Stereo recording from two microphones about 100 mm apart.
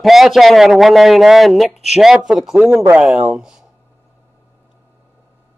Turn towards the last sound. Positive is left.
turn(degrees=-5)  # may be behind; listen again after turning